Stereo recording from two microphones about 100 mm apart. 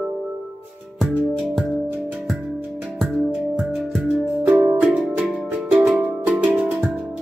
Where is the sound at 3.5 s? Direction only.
5° right (ahead or behind).